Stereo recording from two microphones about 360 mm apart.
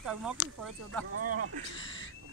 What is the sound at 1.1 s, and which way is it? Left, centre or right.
Speech, right.